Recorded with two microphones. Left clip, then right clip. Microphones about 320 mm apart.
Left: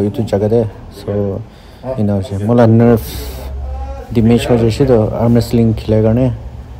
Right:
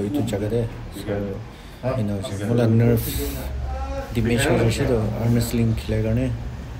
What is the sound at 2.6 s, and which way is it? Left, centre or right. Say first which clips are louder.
A man's voice: left 11 dB; left.